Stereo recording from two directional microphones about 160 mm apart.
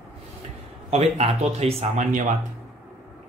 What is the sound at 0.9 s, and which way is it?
Speech, 40° right (ahead or behind).